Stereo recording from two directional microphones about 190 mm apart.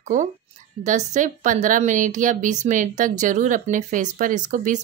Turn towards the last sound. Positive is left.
turn(degrees=-40)  # may be behind; listen again after turning